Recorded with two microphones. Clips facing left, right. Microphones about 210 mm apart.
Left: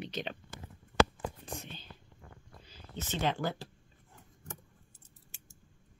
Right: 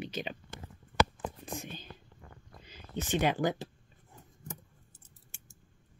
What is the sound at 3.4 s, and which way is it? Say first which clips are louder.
Speech: right 5 dB; 15° right (ahead or behind).